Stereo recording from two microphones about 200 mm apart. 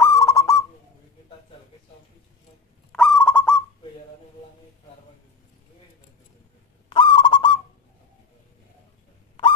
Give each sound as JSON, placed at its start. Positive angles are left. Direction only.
{"t": 0.0, "sound": "owl", "side_deg": 15}
{"t": 2.9, "sound": "owl", "side_deg": 5}
{"t": 6.9, "sound": "owl", "side_deg": 25}